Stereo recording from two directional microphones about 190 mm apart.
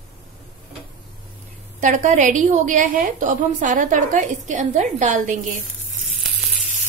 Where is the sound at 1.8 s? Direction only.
40° right (ahead or behind).